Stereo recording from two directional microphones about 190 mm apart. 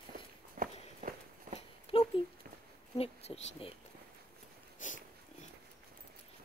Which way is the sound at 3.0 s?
30° left (ahead or behind).